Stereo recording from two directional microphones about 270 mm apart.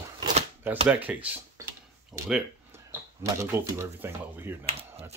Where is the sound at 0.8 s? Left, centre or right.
Centre.